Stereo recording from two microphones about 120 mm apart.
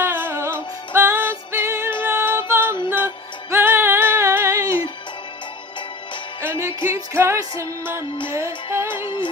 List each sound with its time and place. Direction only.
0.0 s music: 20° right (ahead or behind)
6.4 s music: 20° right (ahead or behind)
9.0 s music: 45° left (ahead or behind)